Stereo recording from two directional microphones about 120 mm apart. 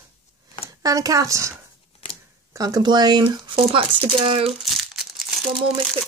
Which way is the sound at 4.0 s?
50° right (ahead or behind).